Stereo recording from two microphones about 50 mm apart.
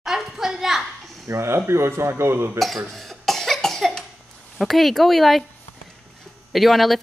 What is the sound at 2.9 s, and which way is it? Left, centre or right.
Cough, centre.